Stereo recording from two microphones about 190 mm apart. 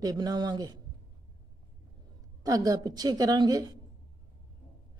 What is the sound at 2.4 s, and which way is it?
A woman's voice, 20° right (ahead or behind).